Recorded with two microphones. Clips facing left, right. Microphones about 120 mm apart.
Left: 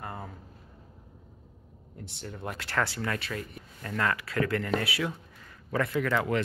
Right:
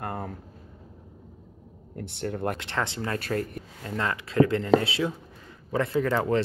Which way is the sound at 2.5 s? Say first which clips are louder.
Even; 20° right (ahead or behind).